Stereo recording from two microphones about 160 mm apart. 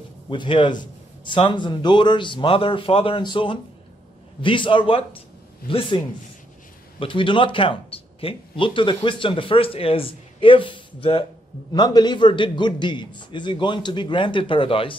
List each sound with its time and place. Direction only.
0.3 s a man's voice: 30° left (ahead or behind)
7.0 s a man's voice: 30° left (ahead or behind)